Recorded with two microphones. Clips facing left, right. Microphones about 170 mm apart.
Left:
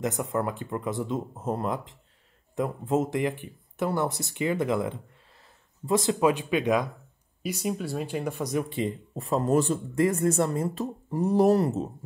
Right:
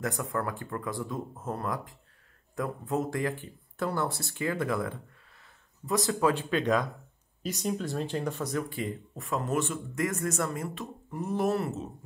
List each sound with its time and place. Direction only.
0.0 s speech: 20° left (ahead or behind); by 11.9 s 35° left (ahead or behind)